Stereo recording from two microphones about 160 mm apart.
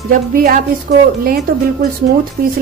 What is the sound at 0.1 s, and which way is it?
A woman's voice, 60° right (ahead or behind).